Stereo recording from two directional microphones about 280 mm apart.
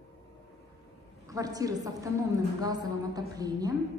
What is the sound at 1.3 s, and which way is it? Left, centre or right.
A woman's voice, centre.